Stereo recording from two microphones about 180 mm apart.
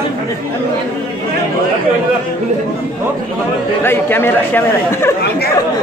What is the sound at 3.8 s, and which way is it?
Speech, 10° left (ahead or behind).